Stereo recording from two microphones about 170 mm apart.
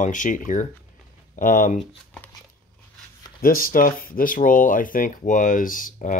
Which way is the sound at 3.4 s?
55° left (ahead or behind).